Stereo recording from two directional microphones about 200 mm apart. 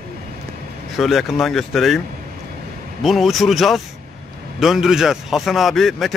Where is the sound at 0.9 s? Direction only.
Centre (ahead or behind).